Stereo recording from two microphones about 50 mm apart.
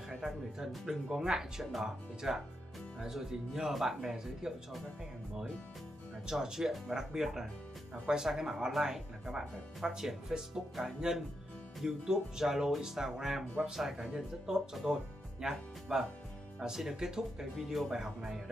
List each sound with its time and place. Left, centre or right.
0.1 s speech: centre
6.2 s speech: centre